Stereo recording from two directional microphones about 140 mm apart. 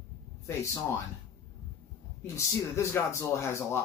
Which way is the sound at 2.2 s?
20° left (ahead or behind).